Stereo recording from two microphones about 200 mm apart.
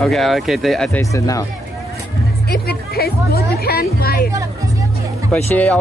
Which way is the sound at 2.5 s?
50° left (ahead or behind).